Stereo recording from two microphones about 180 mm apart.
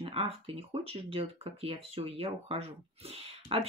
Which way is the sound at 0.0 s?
30° right (ahead or behind).